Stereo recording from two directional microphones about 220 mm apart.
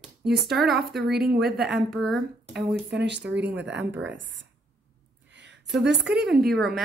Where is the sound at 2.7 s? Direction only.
50° right (ahead or behind).